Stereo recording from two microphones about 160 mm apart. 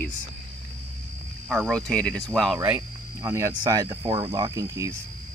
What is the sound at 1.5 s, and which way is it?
Speech, centre (ahead or behind).